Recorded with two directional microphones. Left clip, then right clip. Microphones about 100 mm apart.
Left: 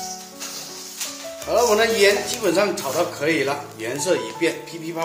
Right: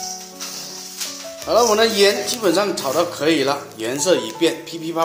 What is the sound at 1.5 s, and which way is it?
A man's voice, 60° right (ahead or behind).